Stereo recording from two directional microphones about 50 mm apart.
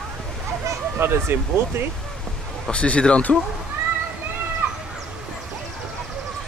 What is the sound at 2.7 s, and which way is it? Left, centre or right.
Speech, left.